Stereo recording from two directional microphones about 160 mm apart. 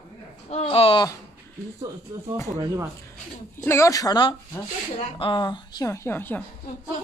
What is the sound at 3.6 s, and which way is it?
A woman's voice, 15° left (ahead or behind).